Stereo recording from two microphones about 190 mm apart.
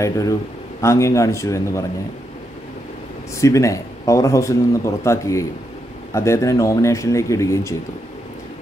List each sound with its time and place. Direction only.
0.7 s speech: 15° left (ahead or behind)
3.3 s speech: 15° left (ahead or behind)